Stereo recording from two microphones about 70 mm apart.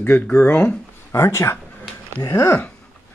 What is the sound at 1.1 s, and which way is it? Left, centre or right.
Speech, left.